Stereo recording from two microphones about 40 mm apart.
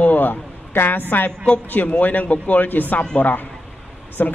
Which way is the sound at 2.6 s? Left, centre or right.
Left.